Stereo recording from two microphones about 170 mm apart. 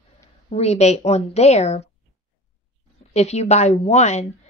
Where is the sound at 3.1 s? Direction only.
40° left (ahead or behind).